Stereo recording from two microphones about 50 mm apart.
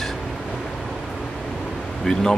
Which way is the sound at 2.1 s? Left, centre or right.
Centre.